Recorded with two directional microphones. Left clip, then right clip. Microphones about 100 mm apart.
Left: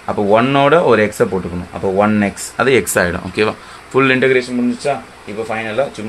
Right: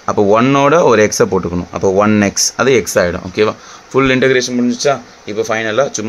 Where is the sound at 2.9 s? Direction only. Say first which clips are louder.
Right 2 dB; 30° right (ahead or behind).